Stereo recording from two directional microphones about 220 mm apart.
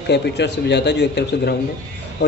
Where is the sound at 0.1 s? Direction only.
50° left (ahead or behind).